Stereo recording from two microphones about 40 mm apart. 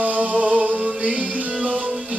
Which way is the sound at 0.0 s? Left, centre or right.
Right.